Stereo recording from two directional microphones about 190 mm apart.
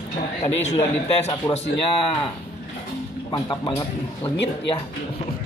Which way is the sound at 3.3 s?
20° left (ahead or behind).